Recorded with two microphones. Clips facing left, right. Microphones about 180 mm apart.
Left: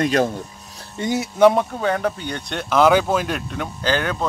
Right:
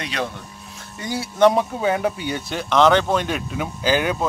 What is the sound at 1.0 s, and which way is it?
Speech, 20° left (ahead or behind).